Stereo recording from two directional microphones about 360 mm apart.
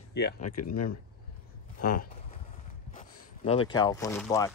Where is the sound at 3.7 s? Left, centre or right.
Centre.